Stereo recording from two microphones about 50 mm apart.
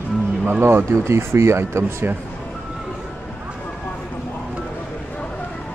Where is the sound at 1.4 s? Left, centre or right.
Right.